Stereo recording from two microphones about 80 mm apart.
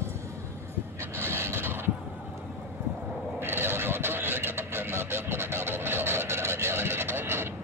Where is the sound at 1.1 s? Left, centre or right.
Right.